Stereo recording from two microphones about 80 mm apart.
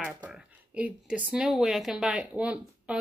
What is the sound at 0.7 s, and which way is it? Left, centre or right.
A woman's voice, centre.